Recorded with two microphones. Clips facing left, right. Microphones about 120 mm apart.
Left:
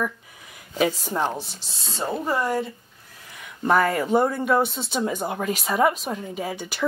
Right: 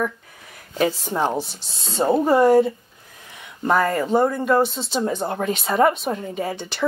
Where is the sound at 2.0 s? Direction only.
30° right (ahead or behind).